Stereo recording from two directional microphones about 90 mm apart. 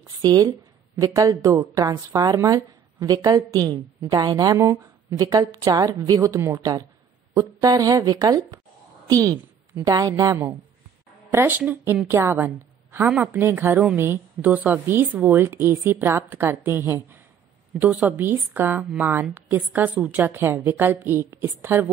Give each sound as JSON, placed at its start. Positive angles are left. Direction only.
{"t": 0.0, "sound": "a woman's voice", "side_deg": -40}
{"t": 11.3, "sound": "a woman's voice", "side_deg": -20}